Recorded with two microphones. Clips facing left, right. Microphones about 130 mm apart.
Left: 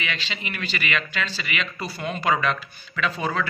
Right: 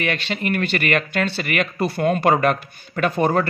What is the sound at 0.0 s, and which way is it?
Speech, 50° right (ahead or behind).